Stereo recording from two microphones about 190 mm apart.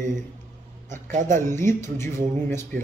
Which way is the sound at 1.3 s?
15° left (ahead or behind).